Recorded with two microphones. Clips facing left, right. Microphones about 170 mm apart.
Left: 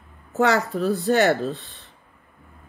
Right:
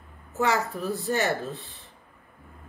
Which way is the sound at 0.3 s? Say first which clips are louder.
Left 5 dB; 75° left (ahead or behind).